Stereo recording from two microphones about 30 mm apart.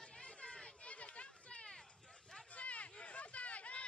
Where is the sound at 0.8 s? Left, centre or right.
Left.